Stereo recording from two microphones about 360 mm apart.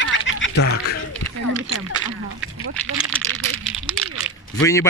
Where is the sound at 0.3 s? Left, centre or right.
Left.